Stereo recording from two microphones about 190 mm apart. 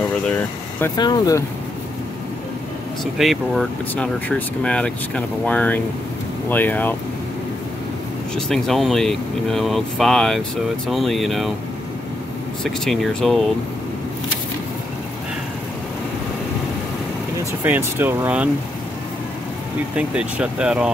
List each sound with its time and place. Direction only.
0.3 s speech: 10° left (ahead or behind)
0.9 s speech: 20° left (ahead or behind)
3.2 s speech: centre (ahead or behind)
8.5 s speech: centre (ahead or behind)
12.8 s speech: centre (ahead or behind)
17.6 s speech: 10° right (ahead or behind)
20.0 s speech: 5° right (ahead or behind)